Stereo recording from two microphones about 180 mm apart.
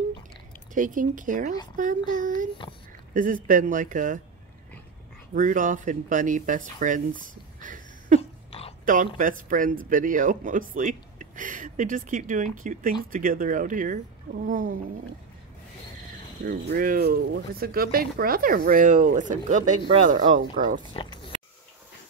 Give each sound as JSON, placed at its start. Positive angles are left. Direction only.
{"t": 0.7, "sound": "speech", "side_deg": -45}
{"t": 3.2, "sound": "speech", "side_deg": -50}
{"t": 5.3, "sound": "speech", "side_deg": -45}
{"t": 7.6, "sound": "a sound", "side_deg": -45}
{"t": 8.2, "sound": "a sound", "side_deg": 35}
{"t": 8.8, "sound": "speech", "side_deg": -45}
{"t": 16.4, "sound": "speech", "side_deg": -55}
{"t": 20.9, "sound": "dog", "side_deg": 25}